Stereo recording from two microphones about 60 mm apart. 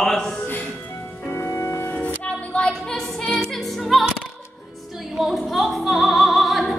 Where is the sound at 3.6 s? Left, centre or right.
Centre.